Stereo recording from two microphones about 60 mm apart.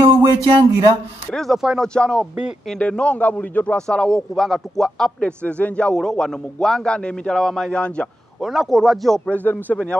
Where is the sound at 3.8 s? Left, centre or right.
Centre.